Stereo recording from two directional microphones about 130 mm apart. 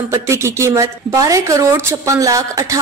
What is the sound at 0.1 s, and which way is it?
Speech, 20° right (ahead or behind).